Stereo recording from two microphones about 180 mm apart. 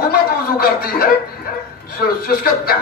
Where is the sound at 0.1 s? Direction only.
55° left (ahead or behind).